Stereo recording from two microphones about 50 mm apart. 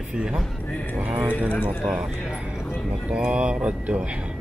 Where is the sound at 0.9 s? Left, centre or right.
Right.